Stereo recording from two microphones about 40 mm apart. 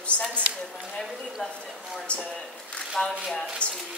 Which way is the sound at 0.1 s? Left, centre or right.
Left.